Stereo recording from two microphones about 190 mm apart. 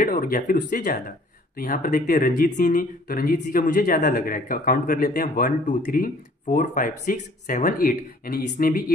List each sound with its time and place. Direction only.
0.0 s speech: 50° left (ahead or behind)